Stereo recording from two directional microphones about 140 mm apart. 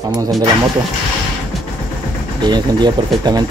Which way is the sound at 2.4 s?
30° right (ahead or behind).